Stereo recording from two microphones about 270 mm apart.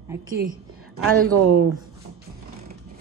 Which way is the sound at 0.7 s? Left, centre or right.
Right.